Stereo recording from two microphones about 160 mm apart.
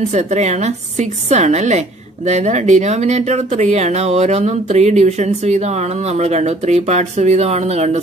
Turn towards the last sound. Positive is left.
turn(degrees=-40)  # may be behind; listen again after turning